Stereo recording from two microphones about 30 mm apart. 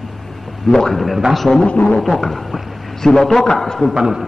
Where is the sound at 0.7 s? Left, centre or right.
Centre.